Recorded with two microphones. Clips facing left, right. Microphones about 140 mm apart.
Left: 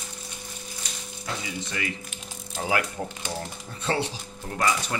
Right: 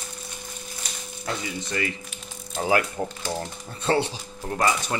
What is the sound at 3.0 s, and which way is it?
Speech, 25° right (ahead or behind).